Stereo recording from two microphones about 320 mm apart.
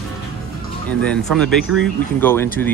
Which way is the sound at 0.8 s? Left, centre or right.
Centre.